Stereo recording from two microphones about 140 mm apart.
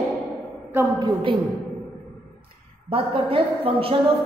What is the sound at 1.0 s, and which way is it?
Speech, 35° right (ahead or behind).